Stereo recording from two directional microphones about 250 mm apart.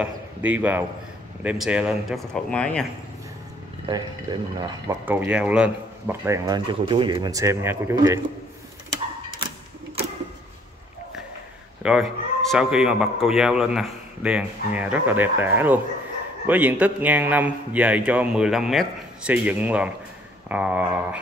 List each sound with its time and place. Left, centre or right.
0.0 s speech: centre
3.8 s speech: centre
11.8 s speech: centre